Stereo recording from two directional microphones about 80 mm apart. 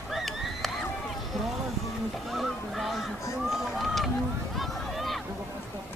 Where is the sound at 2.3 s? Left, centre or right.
Centre.